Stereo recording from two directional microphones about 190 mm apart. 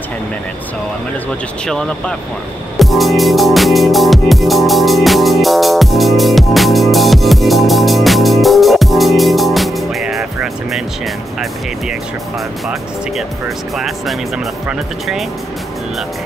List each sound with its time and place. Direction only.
1.7 s speech: 5° left (ahead or behind)
2.8 s music: centre (ahead or behind)
13.7 s speech: centre (ahead or behind)